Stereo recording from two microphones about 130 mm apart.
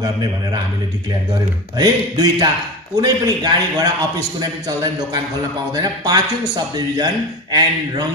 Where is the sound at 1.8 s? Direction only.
30° right (ahead or behind).